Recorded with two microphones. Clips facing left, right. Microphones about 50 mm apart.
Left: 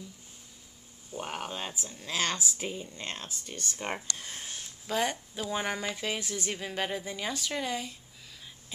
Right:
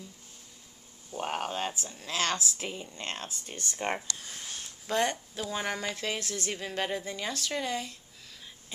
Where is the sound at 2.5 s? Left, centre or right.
Right.